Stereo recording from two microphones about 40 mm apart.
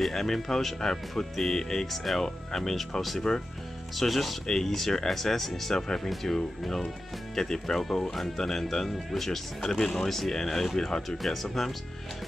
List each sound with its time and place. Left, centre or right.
0.0 s speech: centre